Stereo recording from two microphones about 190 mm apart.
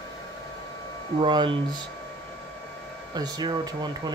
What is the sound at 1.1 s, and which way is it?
Speech, 25° right (ahead or behind).